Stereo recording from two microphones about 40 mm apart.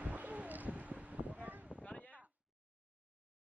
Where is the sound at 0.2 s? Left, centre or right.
Right.